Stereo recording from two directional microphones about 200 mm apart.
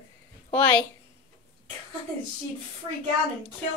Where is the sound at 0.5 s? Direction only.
5° left (ahead or behind).